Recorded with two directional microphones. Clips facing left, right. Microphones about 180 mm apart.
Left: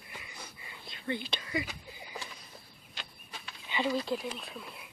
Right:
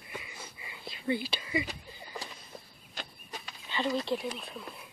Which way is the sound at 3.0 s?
40° right (ahead or behind).